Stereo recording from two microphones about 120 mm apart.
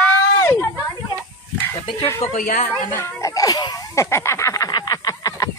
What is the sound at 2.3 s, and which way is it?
Speech, 90° left.